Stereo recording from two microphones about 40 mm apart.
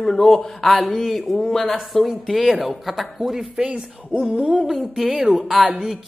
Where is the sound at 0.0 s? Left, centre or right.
Centre.